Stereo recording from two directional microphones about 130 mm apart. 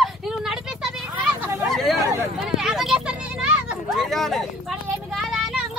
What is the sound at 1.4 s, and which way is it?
Hubbub, 20° right (ahead or behind).